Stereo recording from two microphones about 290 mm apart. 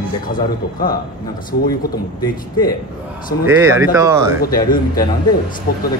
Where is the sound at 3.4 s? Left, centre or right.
Centre.